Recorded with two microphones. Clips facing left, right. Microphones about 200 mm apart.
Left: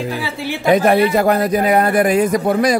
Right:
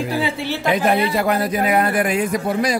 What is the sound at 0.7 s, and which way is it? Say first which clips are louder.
A man's voice: left 6 dB; 45° left (ahead or behind).